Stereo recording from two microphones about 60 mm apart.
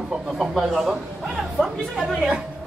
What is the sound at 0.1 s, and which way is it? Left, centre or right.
A man's voice, centre.